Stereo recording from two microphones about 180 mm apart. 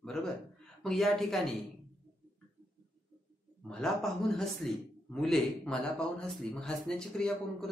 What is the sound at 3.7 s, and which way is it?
A man's voice, centre (ahead or behind).